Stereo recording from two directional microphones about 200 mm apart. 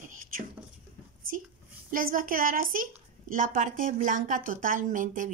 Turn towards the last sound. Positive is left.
turn(degrees=-40)  # may be behind; listen again after turning